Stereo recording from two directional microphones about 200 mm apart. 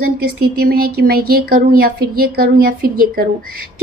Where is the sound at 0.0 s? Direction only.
50° right (ahead or behind).